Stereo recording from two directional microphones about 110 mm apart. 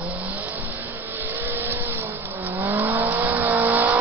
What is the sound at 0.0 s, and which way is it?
Vehicle, 15° right (ahead or behind).